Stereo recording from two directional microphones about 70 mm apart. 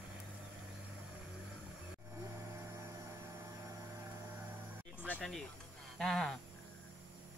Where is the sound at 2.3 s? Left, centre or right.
Right.